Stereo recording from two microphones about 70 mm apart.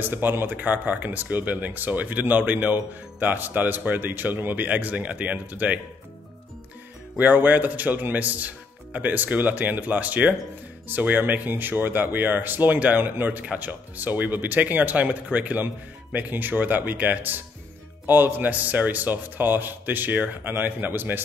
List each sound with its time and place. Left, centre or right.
0.0 s speech: right
7.2 s speech: right